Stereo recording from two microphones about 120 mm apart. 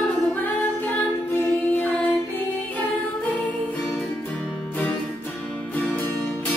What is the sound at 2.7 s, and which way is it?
Music, 15° left (ahead or behind).